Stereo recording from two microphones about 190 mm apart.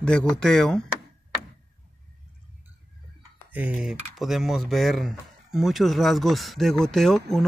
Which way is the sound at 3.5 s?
5° right (ahead or behind).